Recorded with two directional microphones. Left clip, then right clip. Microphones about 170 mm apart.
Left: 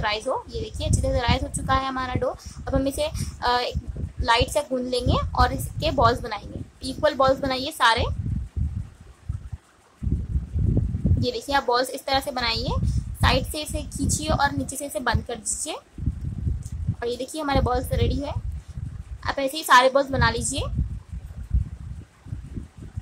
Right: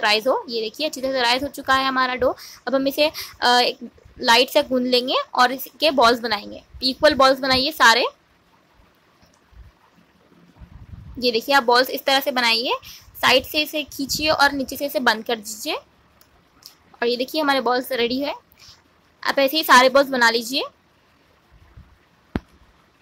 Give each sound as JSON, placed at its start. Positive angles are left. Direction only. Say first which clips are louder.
{"t": 0.0, "sound": "a woman's voice", "louder": "right 7 dB", "side_deg": -20}
{"t": 11.1, "sound": "speech", "louder": "right 7 dB", "side_deg": -15}
{"t": 17.0, "sound": "speech", "louder": "right 7 dB", "side_deg": -15}